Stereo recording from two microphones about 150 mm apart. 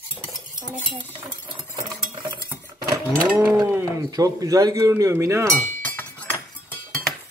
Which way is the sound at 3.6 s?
20° right (ahead or behind).